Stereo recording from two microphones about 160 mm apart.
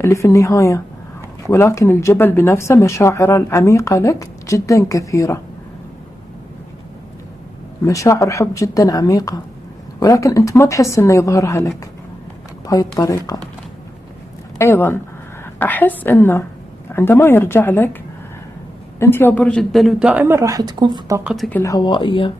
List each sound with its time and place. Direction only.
0.0 s speech: 20° left (ahead or behind)
7.8 s speech: 20° left (ahead or behind)
14.6 s speech: 15° left (ahead or behind)
18.9 s a man's voice: 15° left (ahead or behind); by 21.2 s 25° right (ahead or behind)
21.2 s a man's voice: centre (ahead or behind)
21.5 s speech: 10° left (ahead or behind)
21.7 s speech: 30° left (ahead or behind)